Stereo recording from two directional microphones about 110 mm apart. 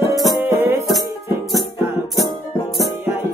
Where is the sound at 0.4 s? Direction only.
20° right (ahead or behind).